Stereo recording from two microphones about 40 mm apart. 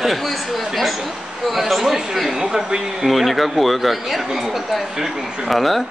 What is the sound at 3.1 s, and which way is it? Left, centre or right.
Speech, centre.